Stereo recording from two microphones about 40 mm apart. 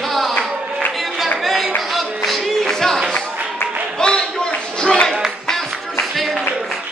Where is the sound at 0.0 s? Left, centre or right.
Centre.